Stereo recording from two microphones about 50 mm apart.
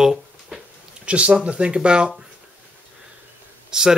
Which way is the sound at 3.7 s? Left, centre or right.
Centre.